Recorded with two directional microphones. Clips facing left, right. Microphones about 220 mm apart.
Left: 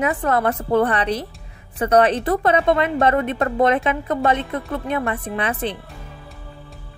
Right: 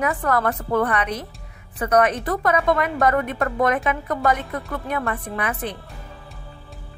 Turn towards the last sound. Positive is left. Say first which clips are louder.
# left 3 dB
turn(degrees=25)  # may be behind; listen again after turning